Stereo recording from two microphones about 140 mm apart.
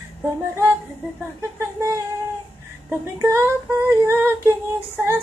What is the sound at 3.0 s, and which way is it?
Humming, 20° right (ahead or behind).